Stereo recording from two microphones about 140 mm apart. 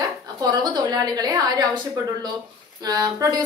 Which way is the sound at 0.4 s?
30° right (ahead or behind).